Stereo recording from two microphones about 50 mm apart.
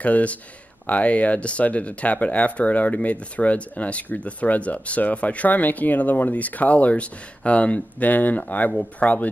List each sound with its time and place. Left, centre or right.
0.0 s speech: left